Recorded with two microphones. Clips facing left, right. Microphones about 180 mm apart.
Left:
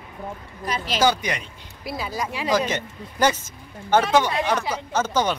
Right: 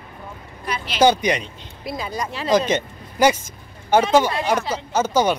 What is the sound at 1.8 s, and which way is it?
Speech, 5° left (ahead or behind).